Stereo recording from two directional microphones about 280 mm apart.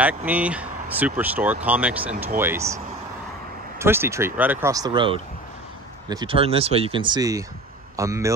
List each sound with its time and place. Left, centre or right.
0.0 s speech: centre
3.8 s speech: centre